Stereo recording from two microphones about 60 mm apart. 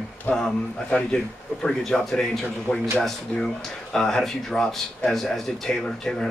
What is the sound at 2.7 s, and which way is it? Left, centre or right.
Speech, centre.